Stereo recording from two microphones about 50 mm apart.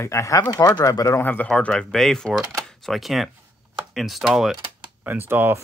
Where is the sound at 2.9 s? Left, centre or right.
Centre.